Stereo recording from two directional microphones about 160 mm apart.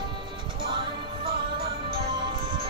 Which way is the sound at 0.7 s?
30° right (ahead or behind).